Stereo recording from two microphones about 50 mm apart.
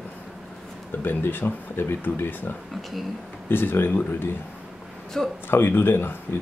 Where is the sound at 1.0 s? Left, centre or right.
Left.